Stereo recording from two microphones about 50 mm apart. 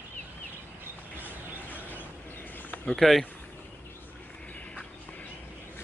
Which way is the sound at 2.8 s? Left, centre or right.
Centre.